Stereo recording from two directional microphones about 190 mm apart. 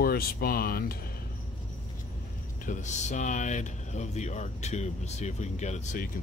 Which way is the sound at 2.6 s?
40° left (ahead or behind).